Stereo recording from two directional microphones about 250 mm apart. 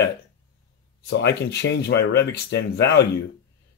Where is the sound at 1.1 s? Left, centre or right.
Left.